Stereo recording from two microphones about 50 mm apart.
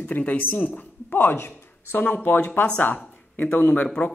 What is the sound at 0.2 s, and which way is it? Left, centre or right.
Speech, left.